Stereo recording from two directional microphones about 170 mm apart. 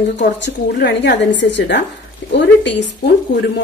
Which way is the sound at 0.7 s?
75° left (ahead or behind).